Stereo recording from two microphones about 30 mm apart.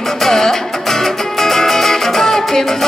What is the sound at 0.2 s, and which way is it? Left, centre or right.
Music, centre.